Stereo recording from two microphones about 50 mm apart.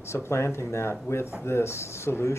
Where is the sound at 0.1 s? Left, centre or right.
Left.